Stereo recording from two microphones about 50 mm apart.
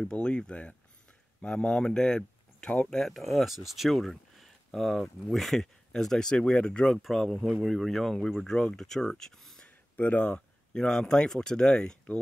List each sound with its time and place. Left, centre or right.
0.0 s speech: centre
2.9 s speech: centre; by 6.9 s left
6.9 s speech: centre
9.9 s speech: left
10.7 s speech: centre